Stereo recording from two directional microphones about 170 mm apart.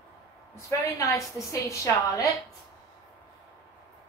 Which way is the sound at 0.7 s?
15° left (ahead or behind).